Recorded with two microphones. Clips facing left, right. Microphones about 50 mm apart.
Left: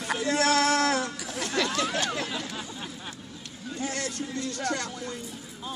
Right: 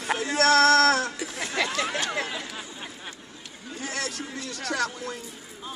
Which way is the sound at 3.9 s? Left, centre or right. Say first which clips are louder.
Even; right.